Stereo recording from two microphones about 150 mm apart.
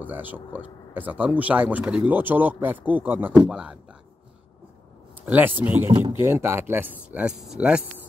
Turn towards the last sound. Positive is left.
turn(degrees=-5)  # may be behind; listen again after turning